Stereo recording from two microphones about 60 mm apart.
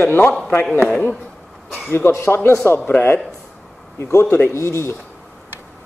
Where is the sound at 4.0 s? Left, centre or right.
Left.